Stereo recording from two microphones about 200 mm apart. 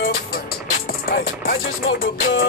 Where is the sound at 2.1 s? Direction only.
75° left (ahead or behind).